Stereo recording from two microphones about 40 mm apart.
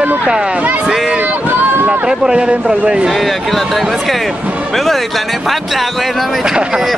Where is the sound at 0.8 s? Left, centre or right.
Centre; by 2.8 s right.